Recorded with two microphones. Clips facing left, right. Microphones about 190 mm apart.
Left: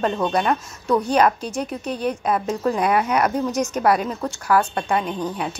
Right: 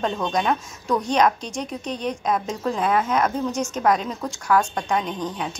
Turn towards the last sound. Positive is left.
turn(degrees=5)  # may be behind; listen again after turning